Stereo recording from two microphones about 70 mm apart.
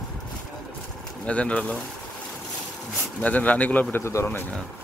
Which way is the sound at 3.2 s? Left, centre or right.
Left.